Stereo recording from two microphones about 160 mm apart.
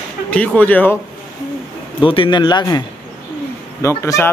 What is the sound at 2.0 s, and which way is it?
Speech, 35° left (ahead or behind).